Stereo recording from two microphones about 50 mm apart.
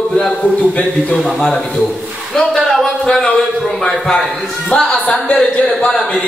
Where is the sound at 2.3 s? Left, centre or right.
Centre.